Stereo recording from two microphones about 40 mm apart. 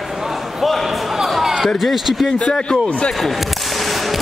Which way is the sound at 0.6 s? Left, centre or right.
Centre.